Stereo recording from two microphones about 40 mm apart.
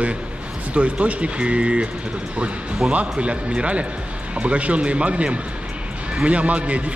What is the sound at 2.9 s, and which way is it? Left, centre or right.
A man's voice, right.